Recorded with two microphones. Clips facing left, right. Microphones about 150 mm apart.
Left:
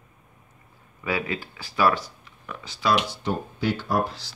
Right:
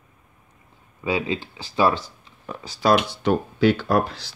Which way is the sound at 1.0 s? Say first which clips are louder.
Right 4 dB; 25° right (ahead or behind).